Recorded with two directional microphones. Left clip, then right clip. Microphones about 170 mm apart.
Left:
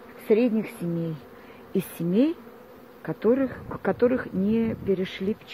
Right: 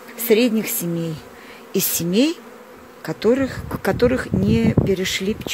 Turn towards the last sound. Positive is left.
turn(degrees=-20)  # may be behind; listen again after turning